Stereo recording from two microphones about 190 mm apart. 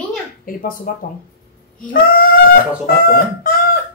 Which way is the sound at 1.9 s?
50° left (ahead or behind).